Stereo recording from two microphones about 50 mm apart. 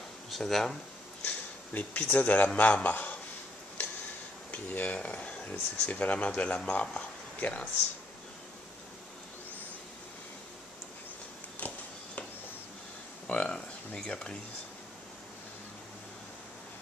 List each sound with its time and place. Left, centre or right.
0.3 s speech: centre
1.2 s speech: left
4.5 s speech: left
4.9 s speech: left
11.6 s a sound: left
13.3 s speech: centre